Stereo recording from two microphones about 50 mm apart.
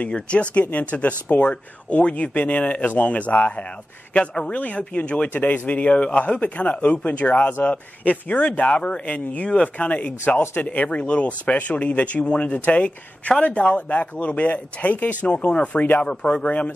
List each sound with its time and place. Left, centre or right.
0.0 s speech: left
15.2 s speech: left